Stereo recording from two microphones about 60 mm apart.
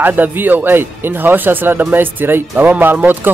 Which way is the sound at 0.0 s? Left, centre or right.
Right.